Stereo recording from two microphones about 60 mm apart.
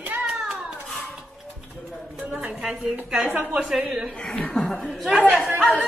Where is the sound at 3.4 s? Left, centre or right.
Right.